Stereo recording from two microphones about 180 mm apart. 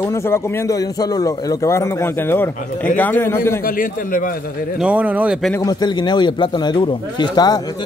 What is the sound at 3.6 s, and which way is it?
Speech, 50° left (ahead or behind).